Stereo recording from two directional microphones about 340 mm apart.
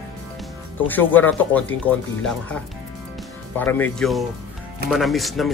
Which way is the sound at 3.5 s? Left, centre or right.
Centre.